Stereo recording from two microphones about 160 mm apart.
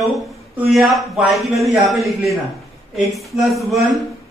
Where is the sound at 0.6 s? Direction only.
Centre (ahead or behind).